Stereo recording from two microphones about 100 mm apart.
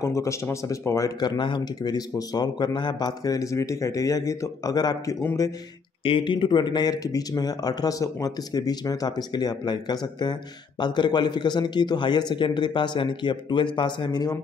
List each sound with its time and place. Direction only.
0.0 s a man's voice: 30° left (ahead or behind)
1.2 s a man's voice: 50° left (ahead or behind); by 5.5 s 30° left (ahead or behind)
6.0 s a man's voice: 60° left (ahead or behind)